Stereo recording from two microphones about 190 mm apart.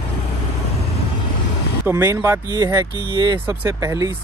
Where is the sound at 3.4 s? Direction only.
15° right (ahead or behind).